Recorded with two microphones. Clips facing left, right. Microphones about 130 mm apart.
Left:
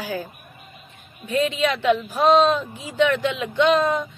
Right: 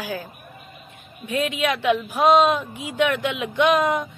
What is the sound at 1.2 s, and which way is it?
A woman's voice, 10° right (ahead or behind).